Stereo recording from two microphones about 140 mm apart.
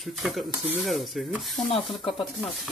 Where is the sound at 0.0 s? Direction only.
Centre (ahead or behind).